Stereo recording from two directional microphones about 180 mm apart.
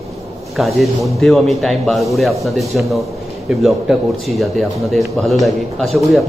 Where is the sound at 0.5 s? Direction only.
Centre (ahead or behind).